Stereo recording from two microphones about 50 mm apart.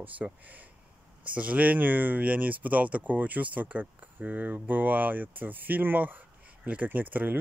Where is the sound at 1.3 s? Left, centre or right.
Right.